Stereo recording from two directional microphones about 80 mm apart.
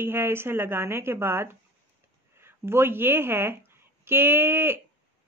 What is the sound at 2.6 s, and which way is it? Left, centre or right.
A woman's voice, right.